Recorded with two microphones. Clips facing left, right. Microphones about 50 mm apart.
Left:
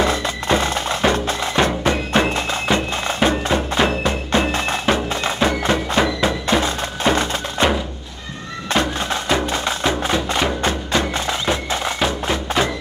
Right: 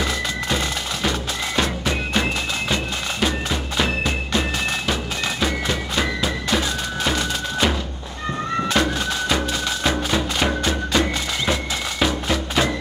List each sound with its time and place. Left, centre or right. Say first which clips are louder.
0.0 s music: left 4 dB; left
8.8 s music: left 5 dB; left